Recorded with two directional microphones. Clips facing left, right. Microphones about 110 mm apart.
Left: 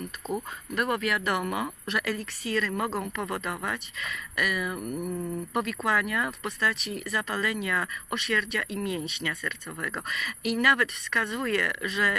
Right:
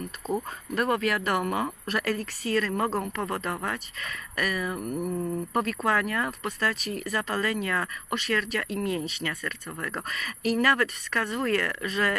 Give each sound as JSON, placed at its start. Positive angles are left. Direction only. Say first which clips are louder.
{"t": 0.7, "sound": "speech", "louder": "right 2 dB", "side_deg": -30}